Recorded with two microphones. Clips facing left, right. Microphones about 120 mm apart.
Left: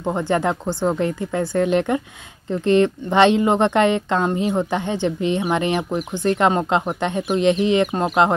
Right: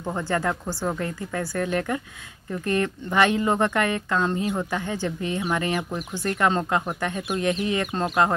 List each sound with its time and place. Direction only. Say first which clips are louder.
0.0 s speech: left 5 dB; 20° left (ahead or behind)